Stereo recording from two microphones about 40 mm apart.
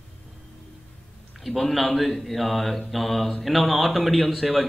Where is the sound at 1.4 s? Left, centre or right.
Centre.